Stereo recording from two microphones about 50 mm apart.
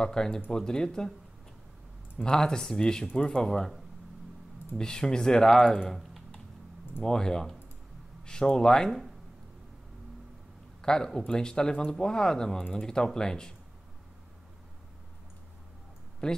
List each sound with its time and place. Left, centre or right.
0.0 s speech: centre
2.2 s speech: centre
3.2 s speech: left
3.4 s speech: centre
5.8 s typing: centre
7.0 s speech: centre
10.8 s speech: centre
16.2 s speech: centre